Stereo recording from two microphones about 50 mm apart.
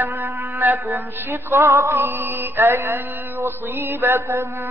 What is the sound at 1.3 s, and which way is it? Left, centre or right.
Female singing, right.